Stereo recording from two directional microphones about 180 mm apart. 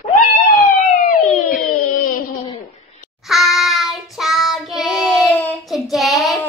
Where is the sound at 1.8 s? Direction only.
50° left (ahead or behind).